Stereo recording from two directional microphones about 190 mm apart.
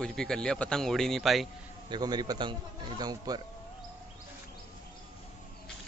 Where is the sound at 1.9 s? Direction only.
20° right (ahead or behind).